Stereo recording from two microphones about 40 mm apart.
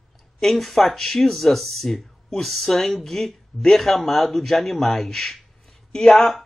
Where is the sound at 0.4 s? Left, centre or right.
Centre.